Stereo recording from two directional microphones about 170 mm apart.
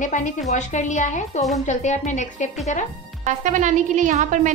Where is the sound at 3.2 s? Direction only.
45° right (ahead or behind).